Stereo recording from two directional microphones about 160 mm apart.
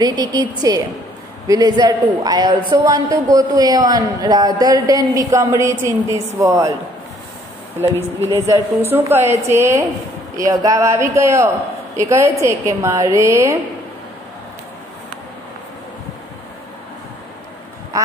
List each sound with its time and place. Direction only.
0.0 s speech: 25° right (ahead or behind)
8.3 s a woman's voice: 20° right (ahead or behind)
17.9 s quack: 20° right (ahead or behind)